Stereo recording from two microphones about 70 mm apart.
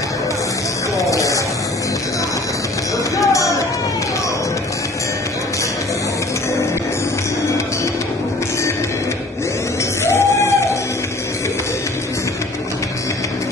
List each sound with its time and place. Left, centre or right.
0.9 s music: left
3.2 s a sound: left
10.0 s music: left